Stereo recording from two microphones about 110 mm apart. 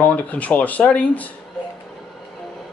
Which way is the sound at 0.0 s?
15° left (ahead or behind).